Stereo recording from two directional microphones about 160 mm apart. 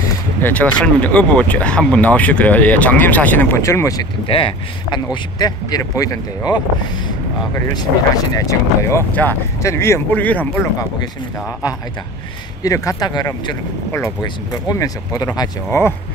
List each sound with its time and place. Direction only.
0.4 s speech: 10° left (ahead or behind)
4.3 s speech: 35° left (ahead or behind); by 10.6 s 10° left (ahead or behind)
12.6 s speech: 20° left (ahead or behind)